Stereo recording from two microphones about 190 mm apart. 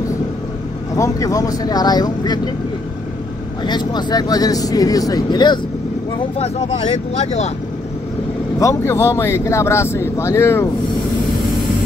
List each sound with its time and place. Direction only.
0.9 s speech: 15° left (ahead or behind)
3.6 s speech: 20° left (ahead or behind)
8.5 s speech: 15° left (ahead or behind)